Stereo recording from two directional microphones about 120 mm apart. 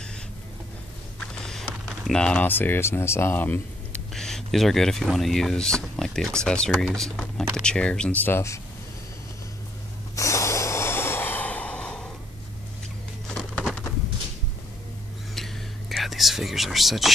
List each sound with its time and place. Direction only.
1.2 s a sound: 5° left (ahead or behind)
4.1 s speech: 5° left (ahead or behind); by 8.5 s 20° left (ahead or behind)
10.1 s snort: 25° left (ahead or behind); by 12.1 s 10° left (ahead or behind)
15.3 s whispering: centre (ahead or behind)